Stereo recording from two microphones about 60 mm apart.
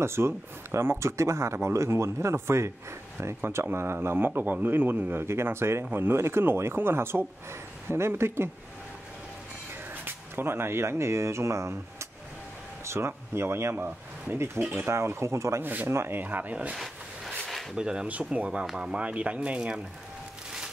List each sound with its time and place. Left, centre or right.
0.0 s speech: right
3.7 s speech: right
10.0 s speech: right
14.9 s speech: right
15.6 s speech: right
15.9 s speech: right
16.2 s speech: right
16.7 s a sound: centre
17.7 s speech: centre